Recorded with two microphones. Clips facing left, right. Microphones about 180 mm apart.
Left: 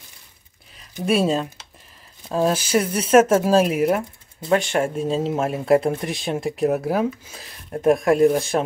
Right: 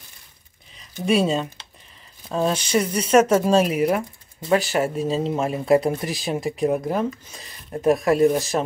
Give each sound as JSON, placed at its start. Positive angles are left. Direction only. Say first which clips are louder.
{"t": 1.0, "sound": "speech", "louder": "even", "side_deg": 0}